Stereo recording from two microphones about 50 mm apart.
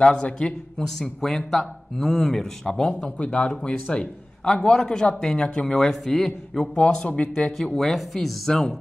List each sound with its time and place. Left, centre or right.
0.0 s speech: left
3.0 s speech: left
5.9 s speech: centre
6.8 s speech: centre
7.5 s speech: centre